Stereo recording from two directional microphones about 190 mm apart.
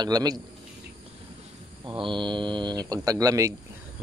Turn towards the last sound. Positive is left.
turn(degrees=-15)  # may be behind; listen again after turning